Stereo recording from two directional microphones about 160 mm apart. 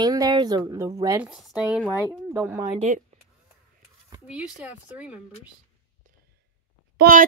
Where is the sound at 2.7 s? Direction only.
45° right (ahead or behind).